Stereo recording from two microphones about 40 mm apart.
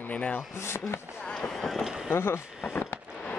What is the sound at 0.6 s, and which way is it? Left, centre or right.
Speech, left.